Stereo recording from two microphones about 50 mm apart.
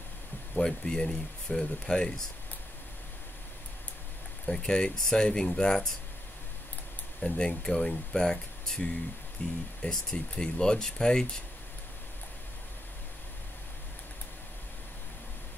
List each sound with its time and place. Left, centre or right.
0.6 s speech: centre
4.5 s speech: centre
7.2 s speech: centre
9.4 s speech: left